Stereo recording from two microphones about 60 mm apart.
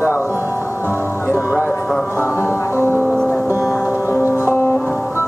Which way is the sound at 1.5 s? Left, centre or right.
Right.